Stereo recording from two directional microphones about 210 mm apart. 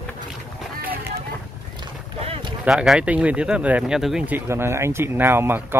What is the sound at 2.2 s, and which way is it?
Run, 25° right (ahead or behind).